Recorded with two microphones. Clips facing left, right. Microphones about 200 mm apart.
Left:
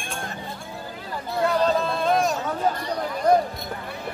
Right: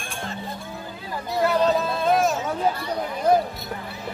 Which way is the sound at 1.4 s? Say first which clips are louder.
Right 1 dB; 5° right (ahead or behind).